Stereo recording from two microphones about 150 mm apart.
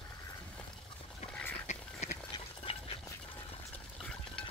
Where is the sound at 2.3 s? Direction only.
40° left (ahead or behind).